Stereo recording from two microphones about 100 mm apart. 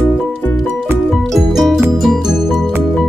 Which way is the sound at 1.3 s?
Centre (ahead or behind).